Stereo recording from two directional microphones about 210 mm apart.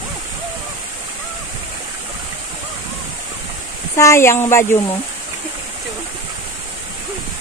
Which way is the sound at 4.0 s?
15° left (ahead or behind).